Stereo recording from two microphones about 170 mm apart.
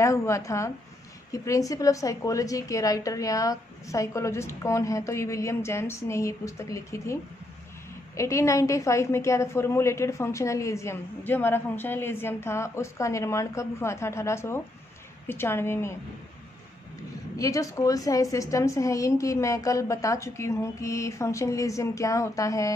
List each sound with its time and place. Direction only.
0.0 s a woman's voice: 15° left (ahead or behind)
8.2 s a woman's voice: 15° left (ahead or behind)
17.4 s a woman's voice: 20° left (ahead or behind)